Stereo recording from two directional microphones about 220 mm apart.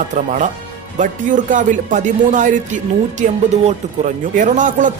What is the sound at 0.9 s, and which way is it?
Speech, 35° right (ahead or behind).